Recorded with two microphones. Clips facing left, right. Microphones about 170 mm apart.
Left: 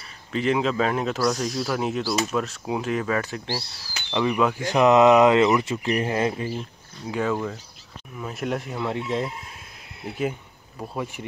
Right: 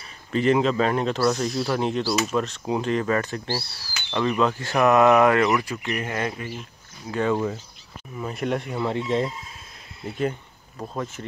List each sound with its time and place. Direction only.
0.3 s speech: centre (ahead or behind)
3.6 s speech: 15° left (ahead or behind)
7.1 s speech: 5° left (ahead or behind)